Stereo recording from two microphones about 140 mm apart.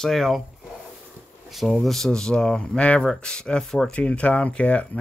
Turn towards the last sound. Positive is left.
turn(degrees=10)  # may be behind; listen again after turning